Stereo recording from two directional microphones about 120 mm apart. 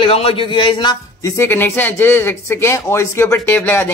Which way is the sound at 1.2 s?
20° left (ahead or behind).